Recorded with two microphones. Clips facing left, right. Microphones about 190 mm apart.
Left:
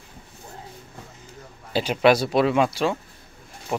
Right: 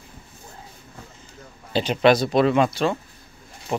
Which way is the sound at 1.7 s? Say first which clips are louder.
Right 1 dB; 5° left (ahead or behind).